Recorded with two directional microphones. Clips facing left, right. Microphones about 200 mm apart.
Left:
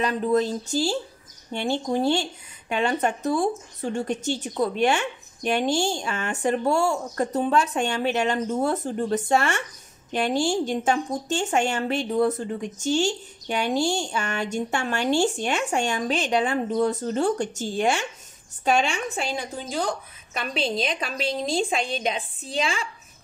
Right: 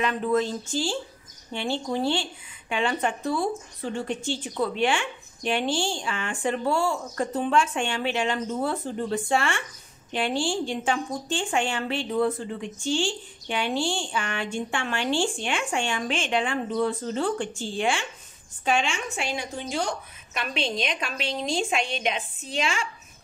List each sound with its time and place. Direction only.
0.0 s a woman's voice: 40° left (ahead or behind)